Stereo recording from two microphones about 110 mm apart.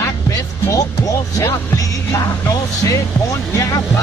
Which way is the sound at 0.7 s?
30° left (ahead or behind).